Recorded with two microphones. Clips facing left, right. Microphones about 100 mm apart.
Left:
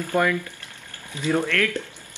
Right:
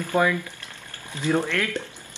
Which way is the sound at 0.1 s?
20° right (ahead or behind).